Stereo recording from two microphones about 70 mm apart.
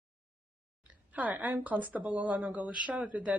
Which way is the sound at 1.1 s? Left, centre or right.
Right.